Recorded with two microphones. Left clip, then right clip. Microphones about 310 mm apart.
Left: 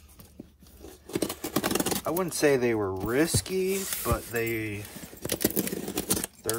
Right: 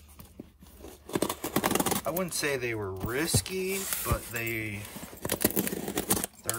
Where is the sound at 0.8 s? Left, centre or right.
Centre.